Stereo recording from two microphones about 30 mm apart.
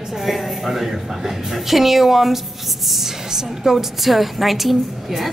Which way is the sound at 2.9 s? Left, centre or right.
Centre.